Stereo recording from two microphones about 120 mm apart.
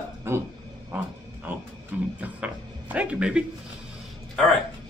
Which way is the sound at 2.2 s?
10° right (ahead or behind).